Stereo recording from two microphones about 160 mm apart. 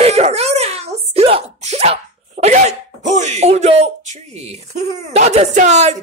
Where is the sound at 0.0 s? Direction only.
40° right (ahead or behind).